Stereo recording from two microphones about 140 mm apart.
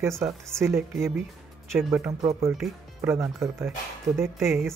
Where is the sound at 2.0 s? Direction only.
25° right (ahead or behind).